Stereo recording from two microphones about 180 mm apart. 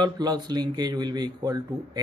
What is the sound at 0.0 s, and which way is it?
Speech, 25° right (ahead or behind).